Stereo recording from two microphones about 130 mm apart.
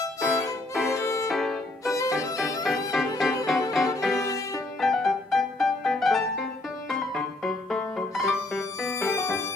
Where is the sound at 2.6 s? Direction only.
Centre (ahead or behind).